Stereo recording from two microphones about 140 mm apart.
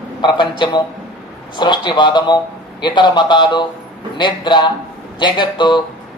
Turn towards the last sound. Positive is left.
turn(degrees=35)  # may be behind; listen again after turning